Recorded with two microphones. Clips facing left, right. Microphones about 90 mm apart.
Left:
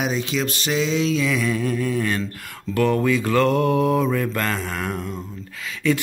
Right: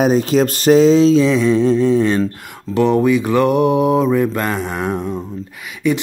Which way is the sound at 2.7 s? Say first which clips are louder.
Right 6 dB; 20° right (ahead or behind).